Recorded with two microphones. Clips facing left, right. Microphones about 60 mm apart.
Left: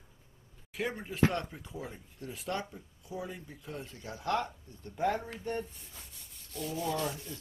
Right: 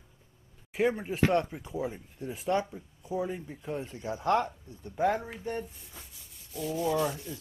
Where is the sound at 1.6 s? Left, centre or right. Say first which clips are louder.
Right 8 dB; centre.